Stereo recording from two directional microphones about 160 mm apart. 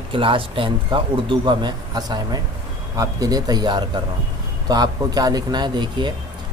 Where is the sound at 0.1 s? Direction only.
35° right (ahead or behind).